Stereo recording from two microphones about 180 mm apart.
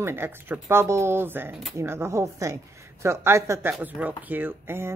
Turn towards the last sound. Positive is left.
turn(degrees=-10)  # may be behind; listen again after turning